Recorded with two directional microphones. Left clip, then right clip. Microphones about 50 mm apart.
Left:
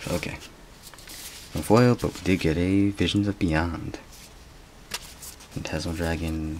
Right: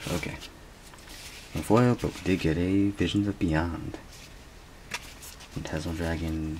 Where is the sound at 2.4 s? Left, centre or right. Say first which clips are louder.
Left 3 dB; left.